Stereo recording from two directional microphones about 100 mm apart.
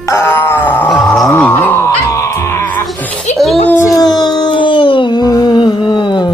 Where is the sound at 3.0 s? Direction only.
15° left (ahead or behind).